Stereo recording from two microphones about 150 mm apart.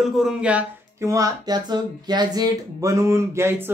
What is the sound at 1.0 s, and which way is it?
Speech, 20° right (ahead or behind).